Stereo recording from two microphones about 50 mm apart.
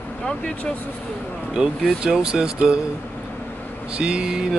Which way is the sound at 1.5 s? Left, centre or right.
Centre.